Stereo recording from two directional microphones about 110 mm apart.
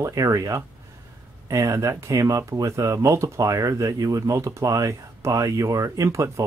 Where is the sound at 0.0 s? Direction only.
30° right (ahead or behind).